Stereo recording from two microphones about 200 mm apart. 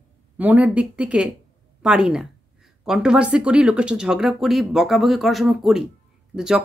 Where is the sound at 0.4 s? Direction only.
5° right (ahead or behind).